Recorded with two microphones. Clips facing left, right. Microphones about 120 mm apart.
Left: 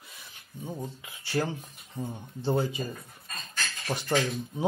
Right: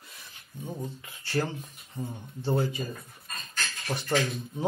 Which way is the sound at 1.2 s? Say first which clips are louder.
Even; 10° left (ahead or behind).